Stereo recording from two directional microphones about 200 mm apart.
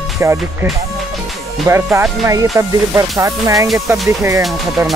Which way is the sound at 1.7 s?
10° right (ahead or behind).